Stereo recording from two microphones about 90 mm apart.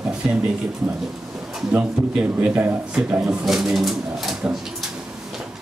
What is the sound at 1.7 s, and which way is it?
Speech, 15° right (ahead or behind).